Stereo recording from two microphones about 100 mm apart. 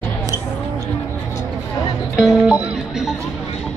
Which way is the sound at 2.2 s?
10° right (ahead or behind).